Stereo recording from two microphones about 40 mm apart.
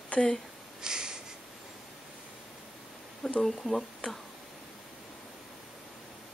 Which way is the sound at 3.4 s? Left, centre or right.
Centre.